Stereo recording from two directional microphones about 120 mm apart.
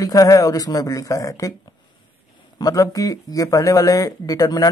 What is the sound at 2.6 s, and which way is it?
Speech, 30° left (ahead or behind).